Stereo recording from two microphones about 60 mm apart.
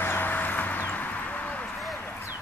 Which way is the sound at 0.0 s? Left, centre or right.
Left.